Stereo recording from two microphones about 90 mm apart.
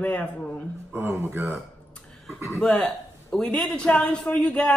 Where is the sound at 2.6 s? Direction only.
5° left (ahead or behind).